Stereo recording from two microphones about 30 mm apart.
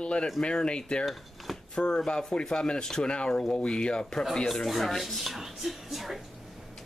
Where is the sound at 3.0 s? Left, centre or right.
Left.